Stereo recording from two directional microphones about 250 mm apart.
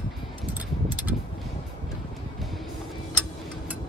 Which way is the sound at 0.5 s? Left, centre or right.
Centre.